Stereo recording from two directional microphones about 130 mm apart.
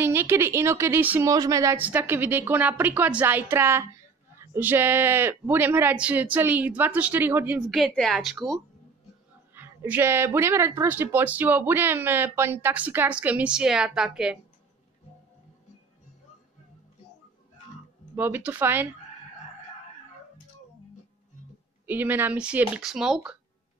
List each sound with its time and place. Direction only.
0.0 s a woman's voice: 15° right (ahead or behind)
1.8 s speech: 15° right (ahead or behind)
7.7 s a woman's voice: 5° left (ahead or behind)
9.5 s speech: 15° right (ahead or behind)
18.1 s speech: 15° right (ahead or behind)
21.8 s speech: 15° right (ahead or behind)